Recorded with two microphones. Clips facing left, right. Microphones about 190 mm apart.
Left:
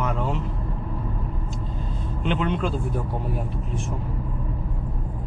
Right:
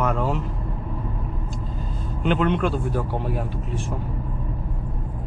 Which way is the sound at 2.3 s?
55° right (ahead or behind).